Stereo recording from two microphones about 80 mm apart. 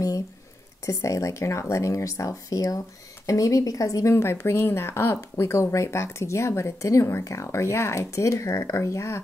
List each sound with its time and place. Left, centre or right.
0.8 s speech: left
4.1 s speech: left